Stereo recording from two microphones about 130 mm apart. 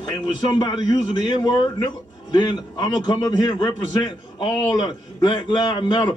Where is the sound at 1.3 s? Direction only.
30° left (ahead or behind).